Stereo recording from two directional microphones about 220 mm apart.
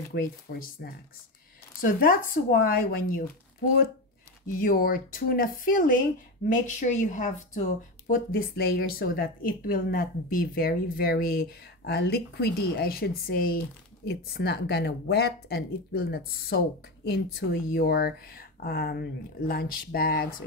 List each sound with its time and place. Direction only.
0.1 s speech: 45° left (ahead or behind)
4.5 s speech: 40° left (ahead or behind)